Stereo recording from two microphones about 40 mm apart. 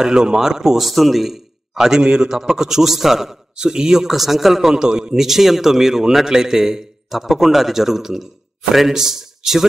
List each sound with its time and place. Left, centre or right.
0.0 s a man's voice: centre
0.8 s a man's voice: centre
5.2 s a man's voice: centre